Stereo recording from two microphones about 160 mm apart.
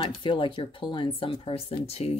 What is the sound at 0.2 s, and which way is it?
Speech, 30° left (ahead or behind).